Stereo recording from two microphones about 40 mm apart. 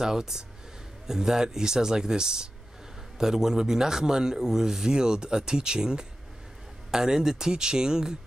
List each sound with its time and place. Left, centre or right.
0.0 s a man's voice: centre